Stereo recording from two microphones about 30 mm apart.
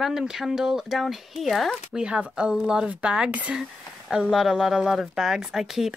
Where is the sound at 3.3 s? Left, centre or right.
Right.